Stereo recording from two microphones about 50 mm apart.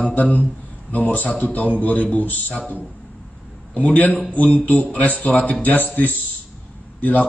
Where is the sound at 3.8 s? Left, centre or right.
Left.